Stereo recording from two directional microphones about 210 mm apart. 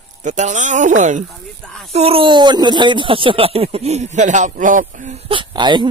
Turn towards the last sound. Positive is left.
turn(degrees=-20)  # may be behind; listen again after turning